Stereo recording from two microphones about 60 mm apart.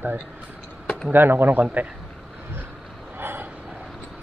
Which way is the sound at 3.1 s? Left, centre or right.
Right.